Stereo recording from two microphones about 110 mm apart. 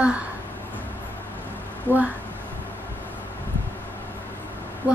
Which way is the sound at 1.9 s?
20° left (ahead or behind).